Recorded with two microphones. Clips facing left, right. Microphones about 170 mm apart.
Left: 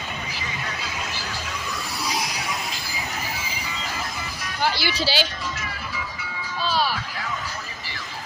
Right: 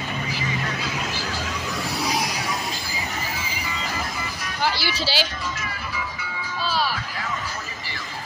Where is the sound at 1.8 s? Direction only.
65° right (ahead or behind).